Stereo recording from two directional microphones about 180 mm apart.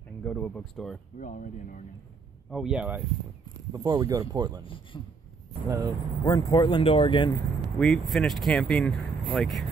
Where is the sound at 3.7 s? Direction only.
20° right (ahead or behind).